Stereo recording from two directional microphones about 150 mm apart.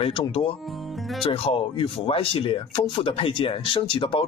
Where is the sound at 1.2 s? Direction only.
40° left (ahead or behind).